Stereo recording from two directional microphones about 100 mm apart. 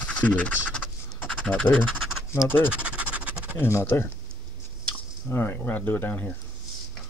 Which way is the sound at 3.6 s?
25° left (ahead or behind).